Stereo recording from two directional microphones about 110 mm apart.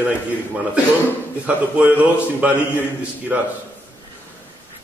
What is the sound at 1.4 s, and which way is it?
A man's voice, 15° right (ahead or behind).